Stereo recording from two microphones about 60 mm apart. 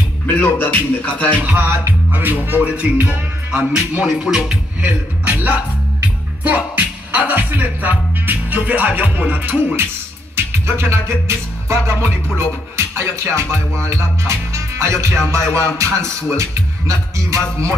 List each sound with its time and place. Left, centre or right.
0.3 s music: left
1.4 s music: right
3.9 s music: centre
4.8 s speech: right
10.3 s music: right
16.3 s speech: right